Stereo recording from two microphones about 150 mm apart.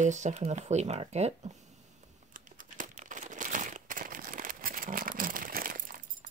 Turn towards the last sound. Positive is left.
turn(degrees=-70)  # may be behind; listen again after turning